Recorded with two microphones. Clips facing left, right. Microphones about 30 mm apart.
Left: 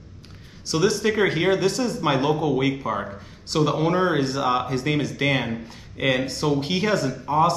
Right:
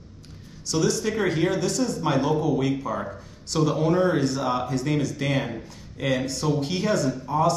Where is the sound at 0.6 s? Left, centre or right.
Left.